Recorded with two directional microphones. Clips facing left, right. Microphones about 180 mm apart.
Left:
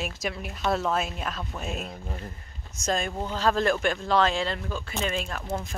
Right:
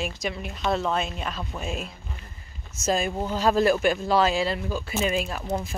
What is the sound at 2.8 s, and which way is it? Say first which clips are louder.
Speech: right 3 dB; 5° right (ahead or behind).